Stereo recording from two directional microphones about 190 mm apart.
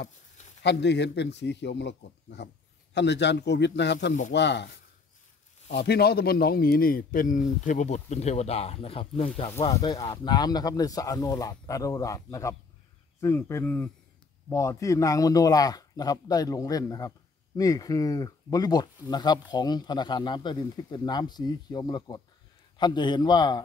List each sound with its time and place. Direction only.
0.6 s a man's voice: 65° left (ahead or behind)
5.8 s speech: 55° left (ahead or behind); by 23.6 s 20° left (ahead or behind)